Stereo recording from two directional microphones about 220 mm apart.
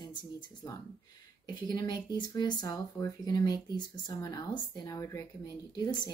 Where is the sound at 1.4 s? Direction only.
20° left (ahead or behind).